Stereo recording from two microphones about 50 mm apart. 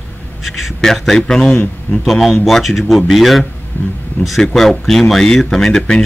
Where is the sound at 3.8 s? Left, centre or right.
Left.